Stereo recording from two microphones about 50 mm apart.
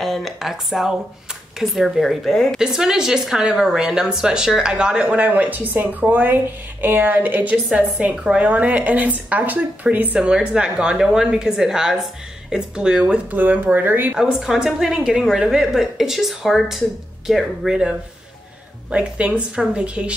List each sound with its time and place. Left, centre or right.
0.0 s a sound: centre
0.4 s a woman's voice: centre
2.6 s a woman's voice: centre; by 7.5 s right
8.0 s speech: right
10.1 s a woman's voice: right
13.1 s speech: right
14.4 s a woman's voice: centre
18.9 s speech: right